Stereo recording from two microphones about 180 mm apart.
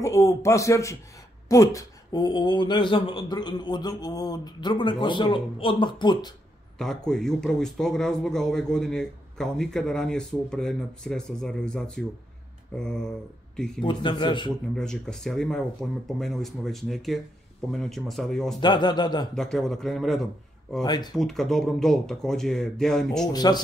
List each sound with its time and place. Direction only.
0.0 s speech: 15° left (ahead or behind)
6.8 s speech: centre (ahead or behind)
13.8 s speech: 25° left (ahead or behind)
14.8 s speech: 5° left (ahead or behind)
18.6 s speech: 25° left (ahead or behind)
19.3 s speech: centre (ahead or behind)
20.8 s speech: 25° left (ahead or behind)
21.2 s speech: centre (ahead or behind)
23.2 s speech: 20° left (ahead or behind)